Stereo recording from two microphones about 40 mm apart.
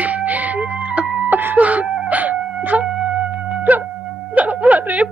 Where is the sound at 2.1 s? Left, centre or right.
Right.